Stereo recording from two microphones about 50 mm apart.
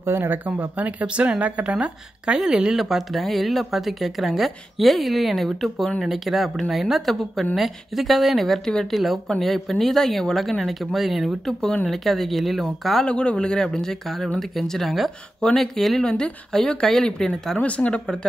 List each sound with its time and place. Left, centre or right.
0.0 s speech: right
0.7 s a woman's voice: right; by 13.0 s centre
13.0 s speech: left; by 16.0 s centre
16.0 s speech: centre
17.6 s speech: left